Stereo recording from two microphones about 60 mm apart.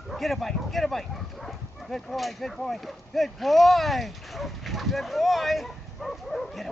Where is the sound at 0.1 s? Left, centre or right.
Centre.